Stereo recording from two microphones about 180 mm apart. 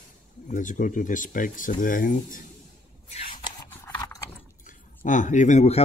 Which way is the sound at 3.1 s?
40° left (ahead or behind).